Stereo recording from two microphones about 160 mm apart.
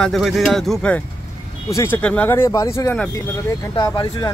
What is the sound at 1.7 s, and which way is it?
Speech, 15° left (ahead or behind).